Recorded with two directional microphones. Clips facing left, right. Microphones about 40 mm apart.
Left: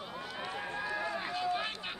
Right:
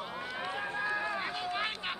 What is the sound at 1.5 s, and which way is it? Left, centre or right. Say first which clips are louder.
Run: right 1 dB; right.